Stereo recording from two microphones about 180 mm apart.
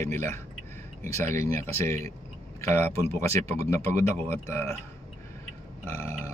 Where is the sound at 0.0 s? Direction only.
15° left (ahead or behind).